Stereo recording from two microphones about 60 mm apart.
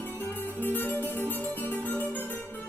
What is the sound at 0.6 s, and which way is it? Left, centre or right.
Music, left.